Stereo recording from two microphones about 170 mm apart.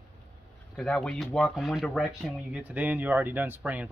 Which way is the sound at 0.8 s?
5° left (ahead or behind).